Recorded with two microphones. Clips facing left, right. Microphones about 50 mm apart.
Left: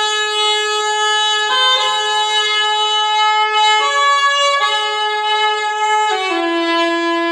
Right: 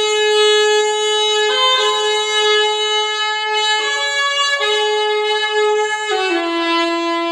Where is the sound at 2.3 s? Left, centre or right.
Centre.